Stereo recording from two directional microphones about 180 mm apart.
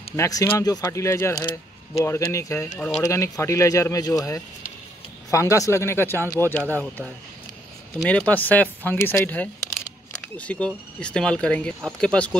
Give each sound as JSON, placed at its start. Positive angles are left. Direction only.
{"t": 0.1, "sound": "speech", "side_deg": 20}
{"t": 8.0, "sound": "speech", "side_deg": 10}